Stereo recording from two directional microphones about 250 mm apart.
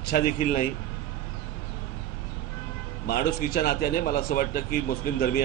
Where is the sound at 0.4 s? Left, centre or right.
Left.